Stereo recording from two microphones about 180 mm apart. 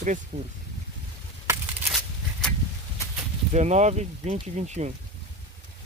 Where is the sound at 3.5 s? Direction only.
40° right (ahead or behind).